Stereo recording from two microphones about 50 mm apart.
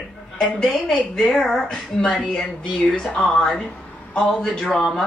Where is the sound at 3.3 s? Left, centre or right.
Centre.